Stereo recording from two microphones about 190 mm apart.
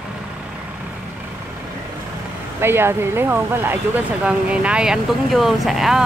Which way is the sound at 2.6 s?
10° right (ahead or behind).